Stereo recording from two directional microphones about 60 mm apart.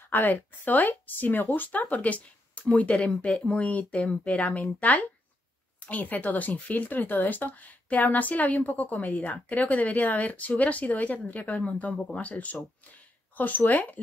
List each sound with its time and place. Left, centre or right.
0.1 s speech: left